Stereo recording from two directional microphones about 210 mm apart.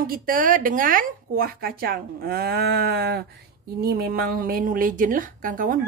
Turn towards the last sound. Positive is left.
turn(degrees=-40)  # may be behind; listen again after turning